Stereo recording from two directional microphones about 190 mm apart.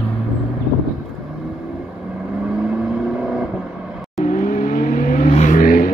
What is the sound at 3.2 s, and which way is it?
Vehicle, centre (ahead or behind).